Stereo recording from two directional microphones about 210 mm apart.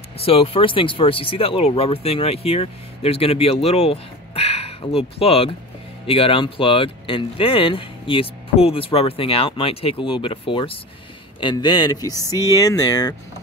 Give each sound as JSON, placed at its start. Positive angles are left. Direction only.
{"t": 0.2, "sound": "speech", "side_deg": 25}